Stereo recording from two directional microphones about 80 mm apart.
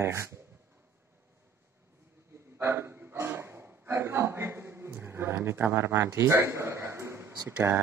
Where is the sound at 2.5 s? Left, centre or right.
Right.